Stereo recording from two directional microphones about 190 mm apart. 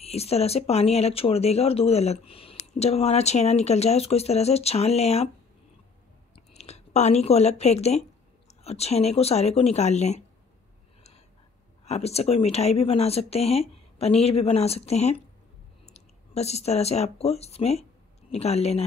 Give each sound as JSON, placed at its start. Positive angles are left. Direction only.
{"t": 0.0, "sound": "speech", "side_deg": 35}
{"t": 6.3, "sound": "speech", "side_deg": 35}
{"t": 11.8, "sound": "speech", "side_deg": 35}